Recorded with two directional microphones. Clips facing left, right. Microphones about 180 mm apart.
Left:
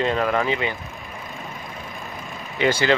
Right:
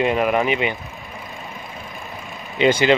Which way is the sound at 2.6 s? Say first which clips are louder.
Right 4 dB; 20° right (ahead or behind).